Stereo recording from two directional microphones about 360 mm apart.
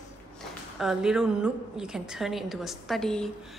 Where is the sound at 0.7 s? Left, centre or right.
Centre.